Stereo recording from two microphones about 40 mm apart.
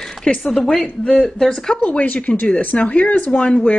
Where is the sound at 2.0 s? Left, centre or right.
Left.